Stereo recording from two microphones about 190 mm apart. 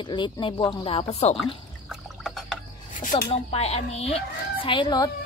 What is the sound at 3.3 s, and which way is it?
A woman's voice, 30° left (ahead or behind).